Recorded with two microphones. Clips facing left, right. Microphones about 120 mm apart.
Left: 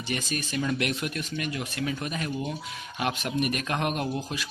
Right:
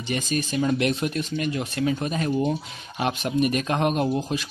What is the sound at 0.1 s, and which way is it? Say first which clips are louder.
Speech: right 5 dB; 25° right (ahead or behind).